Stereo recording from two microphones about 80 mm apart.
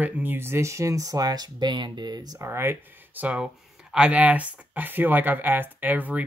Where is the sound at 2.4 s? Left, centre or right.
Right.